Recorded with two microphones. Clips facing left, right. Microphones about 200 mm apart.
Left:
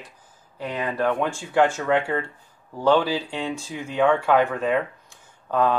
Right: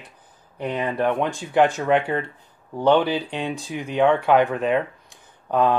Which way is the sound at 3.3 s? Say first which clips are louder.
Right 1 dB; 15° right (ahead or behind).